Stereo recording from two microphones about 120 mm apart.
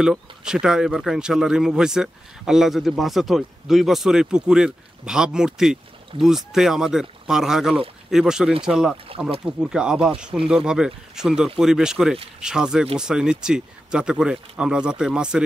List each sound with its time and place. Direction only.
0.0 s speech: 5° right (ahead or behind)
8.9 s speech: 50° right (ahead or behind)
9.6 s speech: 5° right (ahead or behind)